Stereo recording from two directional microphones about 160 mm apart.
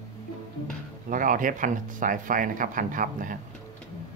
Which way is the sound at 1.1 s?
55° right (ahead or behind).